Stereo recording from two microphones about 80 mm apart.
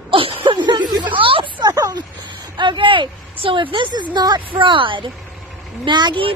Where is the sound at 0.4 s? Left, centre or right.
Right.